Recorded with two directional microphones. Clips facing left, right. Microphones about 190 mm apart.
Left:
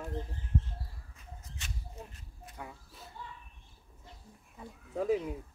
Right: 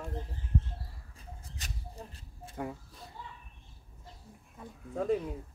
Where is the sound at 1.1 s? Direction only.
40° right (ahead or behind).